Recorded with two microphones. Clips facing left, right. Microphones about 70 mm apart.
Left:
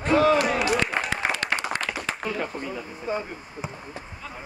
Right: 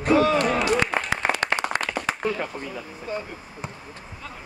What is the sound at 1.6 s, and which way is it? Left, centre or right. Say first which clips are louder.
Applause: right 3 dB; centre.